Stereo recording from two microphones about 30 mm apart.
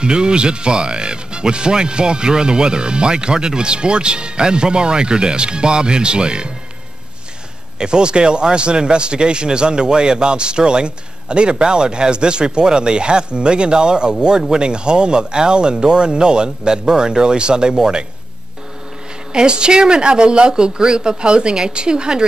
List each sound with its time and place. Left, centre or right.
0.0 s speech: right
7.8 s speech: right
19.3 s speech: right